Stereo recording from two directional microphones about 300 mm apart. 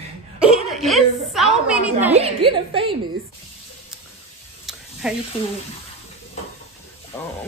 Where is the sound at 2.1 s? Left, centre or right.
Centre.